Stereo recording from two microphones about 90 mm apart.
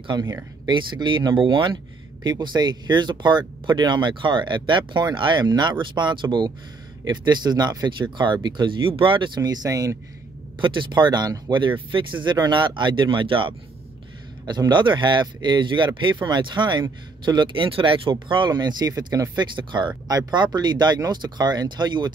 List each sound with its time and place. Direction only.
0.0 s speech: 55° right (ahead or behind)
2.2 s speech: 55° right (ahead or behind)
9.4 s speech: 45° right (ahead or behind)
10.6 s speech: 65° right (ahead or behind)
14.4 s speech: 50° right (ahead or behind)
17.6 s speech: 80° right; by 19.2 s 45° right (ahead or behind)
19.3 s speech: 60° right (ahead or behind)